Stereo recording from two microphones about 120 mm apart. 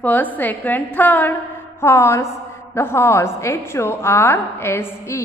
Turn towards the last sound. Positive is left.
turn(degrees=20)  # may be behind; listen again after turning